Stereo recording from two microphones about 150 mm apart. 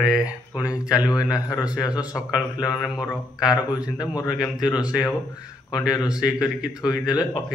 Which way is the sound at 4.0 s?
25° left (ahead or behind).